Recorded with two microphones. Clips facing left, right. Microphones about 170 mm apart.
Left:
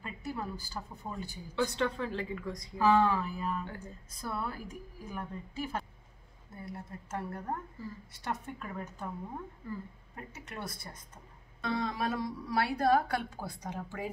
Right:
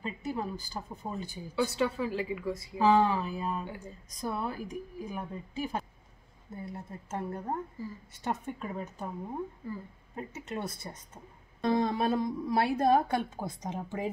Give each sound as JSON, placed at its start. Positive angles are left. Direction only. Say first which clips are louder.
{"t": 0.0, "sound": "a woman's voice", "louder": "right 4 dB", "side_deg": -15}
{"t": 1.5, "sound": "a woman's voice", "louder": "right 2 dB", "side_deg": -5}
{"t": 10.1, "sound": "a woman's voice", "louder": "right 7 dB", "side_deg": -20}
{"t": 11.6, "sound": "a woman's voice", "louder": "right 6 dB", "side_deg": -35}